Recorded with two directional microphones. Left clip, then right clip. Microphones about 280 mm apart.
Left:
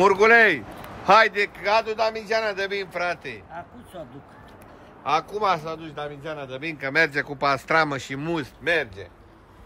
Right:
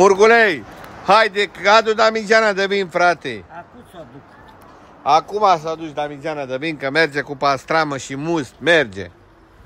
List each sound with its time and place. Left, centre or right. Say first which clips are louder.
0.0 s a man's voice: right 4 dB; centre
5.0 s a man's voice: right 8 dB; centre
8.6 s a man's voice: right 9 dB; right